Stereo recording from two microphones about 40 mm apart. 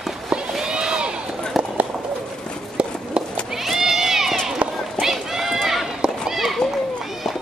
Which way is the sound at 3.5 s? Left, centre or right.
Centre.